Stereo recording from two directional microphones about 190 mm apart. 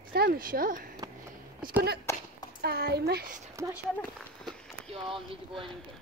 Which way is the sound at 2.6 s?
55° right (ahead or behind).